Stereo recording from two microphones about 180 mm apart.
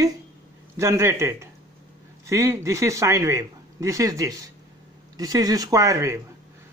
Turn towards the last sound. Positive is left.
turn(degrees=-15)  # may be behind; listen again after turning